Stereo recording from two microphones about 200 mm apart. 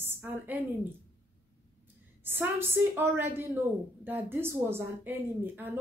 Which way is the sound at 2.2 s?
10° right (ahead or behind).